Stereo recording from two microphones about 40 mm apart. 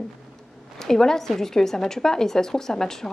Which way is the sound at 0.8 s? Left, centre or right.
Centre.